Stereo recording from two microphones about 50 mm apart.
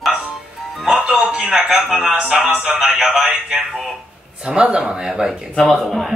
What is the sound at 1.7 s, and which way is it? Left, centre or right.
Speech, centre.